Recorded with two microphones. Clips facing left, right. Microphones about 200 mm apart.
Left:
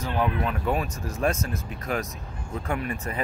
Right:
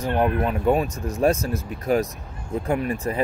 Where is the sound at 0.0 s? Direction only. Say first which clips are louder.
Right 5 dB; 55° right (ahead or behind).